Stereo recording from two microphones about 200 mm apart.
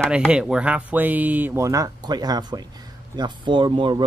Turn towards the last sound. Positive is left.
turn(degrees=-25)  # may be behind; listen again after turning